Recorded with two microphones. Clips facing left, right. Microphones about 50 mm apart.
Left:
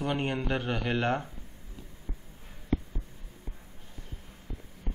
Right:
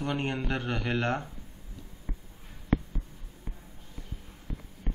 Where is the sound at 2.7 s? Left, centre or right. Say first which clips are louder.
Right 2 dB; right.